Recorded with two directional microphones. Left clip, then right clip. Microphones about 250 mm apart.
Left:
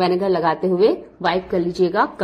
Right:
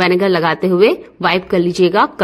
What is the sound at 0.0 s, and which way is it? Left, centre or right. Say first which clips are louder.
A woman's voice: right 5 dB; right.